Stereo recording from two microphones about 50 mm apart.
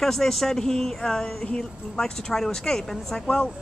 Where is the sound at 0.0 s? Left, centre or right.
Centre.